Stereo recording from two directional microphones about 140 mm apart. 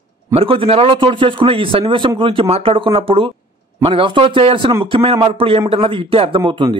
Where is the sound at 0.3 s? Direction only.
40° right (ahead or behind).